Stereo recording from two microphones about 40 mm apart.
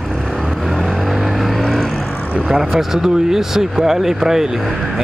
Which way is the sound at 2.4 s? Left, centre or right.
Centre.